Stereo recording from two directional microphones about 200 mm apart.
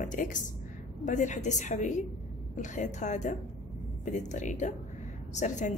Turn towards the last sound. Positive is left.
turn(degrees=35)  # may be behind; listen again after turning